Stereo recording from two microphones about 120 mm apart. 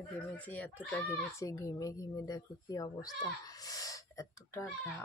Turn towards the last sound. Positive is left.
turn(degrees=25)  # may be behind; listen again after turning